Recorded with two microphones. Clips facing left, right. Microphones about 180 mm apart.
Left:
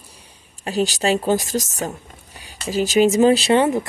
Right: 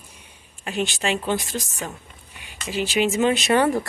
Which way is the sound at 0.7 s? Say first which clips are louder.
Left 5 dB; 40° left (ahead or behind).